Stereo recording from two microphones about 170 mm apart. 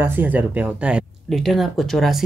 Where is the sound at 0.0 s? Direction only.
10° right (ahead or behind).